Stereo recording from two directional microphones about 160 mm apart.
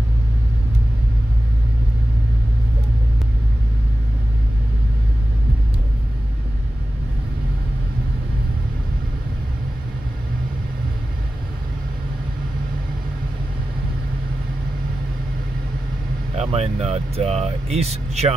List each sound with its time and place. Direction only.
16.3 s speech: 40° right (ahead or behind)